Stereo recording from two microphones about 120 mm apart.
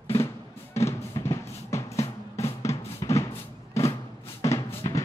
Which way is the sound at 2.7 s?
25° left (ahead or behind).